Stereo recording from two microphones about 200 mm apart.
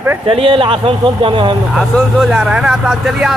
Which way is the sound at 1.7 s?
Centre (ahead or behind).